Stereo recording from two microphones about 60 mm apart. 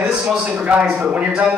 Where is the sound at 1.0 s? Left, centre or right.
Centre.